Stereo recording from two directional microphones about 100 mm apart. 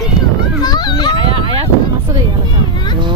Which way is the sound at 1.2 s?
55° right (ahead or behind).